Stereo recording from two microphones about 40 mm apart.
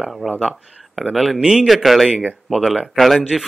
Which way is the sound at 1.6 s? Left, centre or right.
Centre.